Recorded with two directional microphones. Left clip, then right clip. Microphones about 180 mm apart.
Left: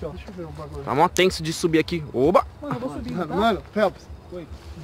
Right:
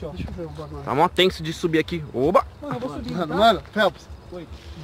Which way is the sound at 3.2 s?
55° right (ahead or behind).